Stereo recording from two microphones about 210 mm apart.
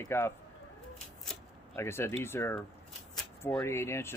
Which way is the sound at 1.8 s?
10° left (ahead or behind).